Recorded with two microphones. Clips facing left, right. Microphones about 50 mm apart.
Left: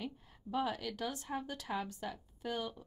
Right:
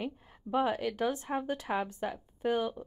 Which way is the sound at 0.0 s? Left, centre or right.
Right.